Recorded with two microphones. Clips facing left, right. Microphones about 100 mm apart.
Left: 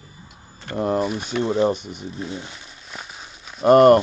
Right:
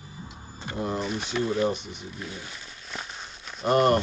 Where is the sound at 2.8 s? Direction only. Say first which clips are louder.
Even; 5° left (ahead or behind).